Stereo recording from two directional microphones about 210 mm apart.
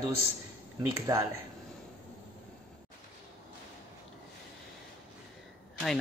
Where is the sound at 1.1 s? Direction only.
20° right (ahead or behind).